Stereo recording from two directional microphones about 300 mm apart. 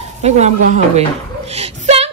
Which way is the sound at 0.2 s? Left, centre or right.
Right.